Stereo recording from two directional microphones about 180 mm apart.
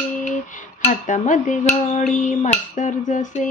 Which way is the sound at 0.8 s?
40° left (ahead or behind).